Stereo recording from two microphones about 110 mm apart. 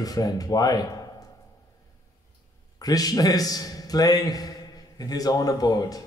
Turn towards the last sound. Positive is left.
turn(degrees=35)  # may be behind; listen again after turning